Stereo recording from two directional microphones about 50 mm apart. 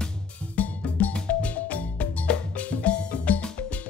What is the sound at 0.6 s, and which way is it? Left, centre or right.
Music, left.